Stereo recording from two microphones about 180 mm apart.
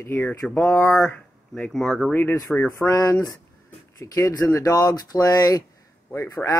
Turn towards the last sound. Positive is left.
turn(degrees=20)  # may be behind; listen again after turning